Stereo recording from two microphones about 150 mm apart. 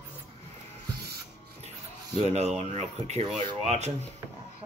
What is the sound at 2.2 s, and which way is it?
Speech, 45° right (ahead or behind).